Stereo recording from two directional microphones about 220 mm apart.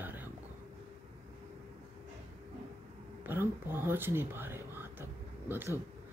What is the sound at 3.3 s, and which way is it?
Speech, 10° right (ahead or behind).